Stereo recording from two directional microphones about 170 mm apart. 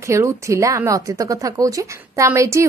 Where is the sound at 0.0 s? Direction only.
15° right (ahead or behind).